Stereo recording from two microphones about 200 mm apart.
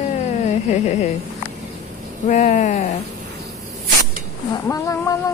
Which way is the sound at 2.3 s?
40° left (ahead or behind).